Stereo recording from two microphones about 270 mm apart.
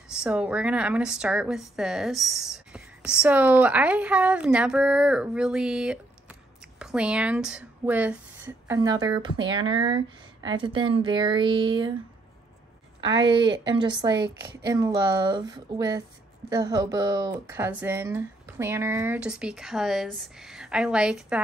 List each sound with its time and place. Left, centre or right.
0.1 s a woman's voice: centre
13.0 s a woman's voice: centre